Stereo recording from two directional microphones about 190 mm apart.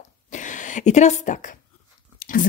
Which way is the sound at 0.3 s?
40° left (ahead or behind).